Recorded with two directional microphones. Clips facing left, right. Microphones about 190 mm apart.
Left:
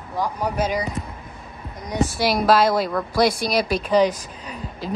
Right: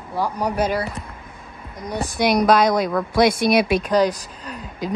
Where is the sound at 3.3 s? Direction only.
55° right (ahead or behind).